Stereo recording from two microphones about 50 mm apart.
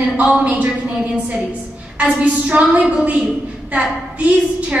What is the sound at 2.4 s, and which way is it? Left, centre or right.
A woman's voice, right.